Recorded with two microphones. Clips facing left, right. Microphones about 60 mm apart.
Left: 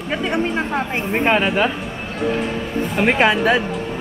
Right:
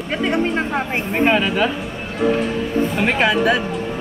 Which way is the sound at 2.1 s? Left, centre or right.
Centre.